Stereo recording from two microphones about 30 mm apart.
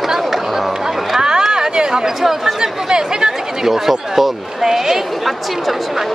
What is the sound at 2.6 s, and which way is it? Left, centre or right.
Speech, right.